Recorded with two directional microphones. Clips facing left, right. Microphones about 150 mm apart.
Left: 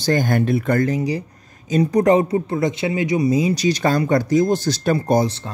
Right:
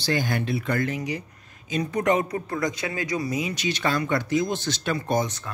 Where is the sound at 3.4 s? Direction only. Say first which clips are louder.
Left 9 dB; 35° left (ahead or behind).